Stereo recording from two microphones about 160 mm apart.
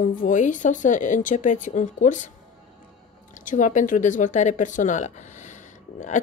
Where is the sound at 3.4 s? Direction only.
55° left (ahead or behind).